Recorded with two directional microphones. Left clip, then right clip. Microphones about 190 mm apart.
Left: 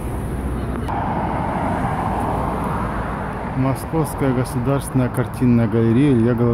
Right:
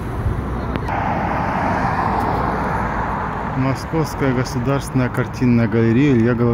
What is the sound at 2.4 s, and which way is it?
Vehicle, 45° left (ahead or behind).